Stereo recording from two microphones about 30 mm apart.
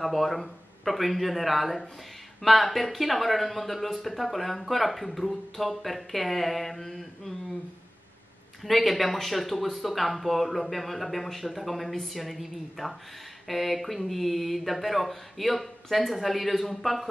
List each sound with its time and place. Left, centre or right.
0.0 s speech: centre
8.6 s speech: centre